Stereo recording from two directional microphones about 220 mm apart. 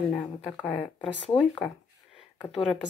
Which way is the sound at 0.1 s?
5° left (ahead or behind).